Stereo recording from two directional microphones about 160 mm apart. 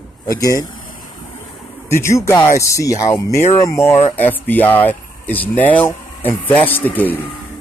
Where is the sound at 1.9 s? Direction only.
15° left (ahead or behind).